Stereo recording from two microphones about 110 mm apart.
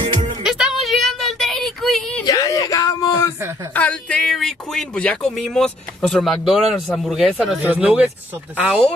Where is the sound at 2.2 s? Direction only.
30° left (ahead or behind).